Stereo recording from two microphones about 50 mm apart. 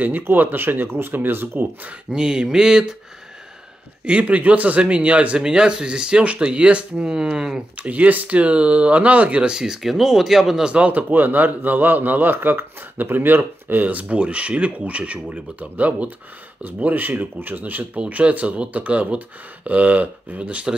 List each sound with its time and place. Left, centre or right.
0.0 s a man's voice: right
2.0 s speech: centre
4.0 s speech: right
5.4 s speech: centre
7.7 s speech: right
9.6 s speech: centre
10.7 s a man's voice: right
13.8 s a man's voice: right